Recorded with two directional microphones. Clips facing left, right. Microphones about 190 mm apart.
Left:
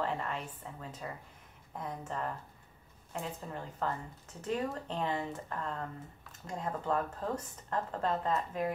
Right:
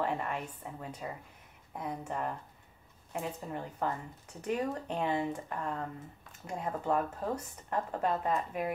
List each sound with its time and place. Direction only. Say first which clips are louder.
0.0 s a woman's voice: right 2 dB; 10° right (ahead or behind)